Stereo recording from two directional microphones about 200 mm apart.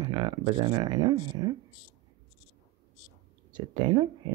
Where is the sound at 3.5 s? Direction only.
20° right (ahead or behind).